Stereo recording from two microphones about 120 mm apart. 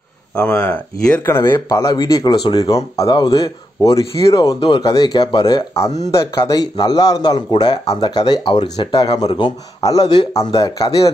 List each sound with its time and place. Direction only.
0.4 s speech: 10° left (ahead or behind)
1.7 s speech: 30° left (ahead or behind)
4.6 s speech: 40° left (ahead or behind)